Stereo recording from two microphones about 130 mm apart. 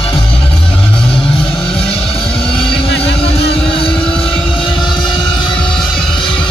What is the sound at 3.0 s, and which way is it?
Vehicle, 45° left (ahead or behind).